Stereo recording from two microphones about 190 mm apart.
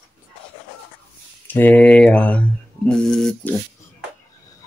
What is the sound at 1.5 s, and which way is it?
Speech, 10° left (ahead or behind).